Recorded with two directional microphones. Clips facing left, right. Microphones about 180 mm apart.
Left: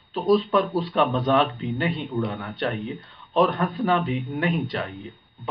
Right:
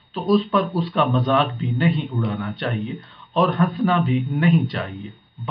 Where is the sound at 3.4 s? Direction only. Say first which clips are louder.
Right 2 dB; 35° left (ahead or behind).